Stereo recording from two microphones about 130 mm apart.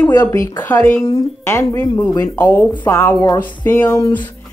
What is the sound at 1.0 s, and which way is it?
Speech, 25° left (ahead or behind).